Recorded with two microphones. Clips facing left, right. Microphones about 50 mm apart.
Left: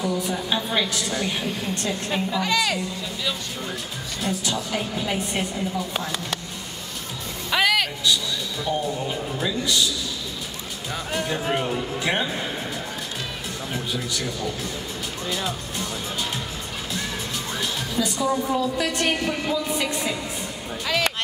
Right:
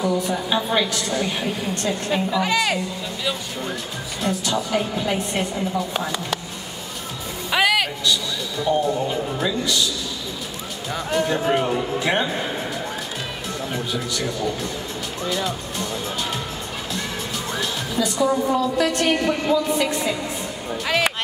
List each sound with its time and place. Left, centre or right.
0.0 s a woman's voice: centre
2.4 s speech: right
4.2 s a woman's voice: centre
7.5 s a sound: centre
8.6 s a woman's voice: centre
11.1 s speech: centre
13.7 s a woman's voice: centre
17.6 s a woman's voice: centre
20.8 s speech: right